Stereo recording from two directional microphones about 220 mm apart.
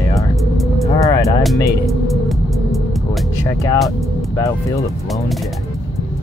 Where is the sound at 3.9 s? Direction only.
15° left (ahead or behind).